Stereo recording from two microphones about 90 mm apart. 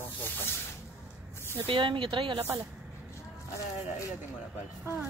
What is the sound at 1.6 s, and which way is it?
Speech, 70° right (ahead or behind).